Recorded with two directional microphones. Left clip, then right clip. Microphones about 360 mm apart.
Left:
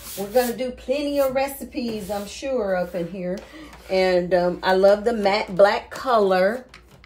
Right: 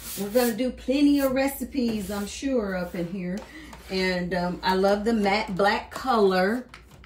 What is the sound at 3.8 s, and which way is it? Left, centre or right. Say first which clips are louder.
A woman's voice: left 8 dB; centre.